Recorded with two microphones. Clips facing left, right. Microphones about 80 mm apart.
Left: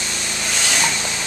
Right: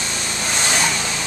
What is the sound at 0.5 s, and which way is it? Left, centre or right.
Vehicle, right.